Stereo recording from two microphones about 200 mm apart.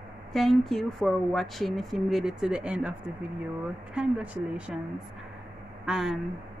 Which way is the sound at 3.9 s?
5° right (ahead or behind).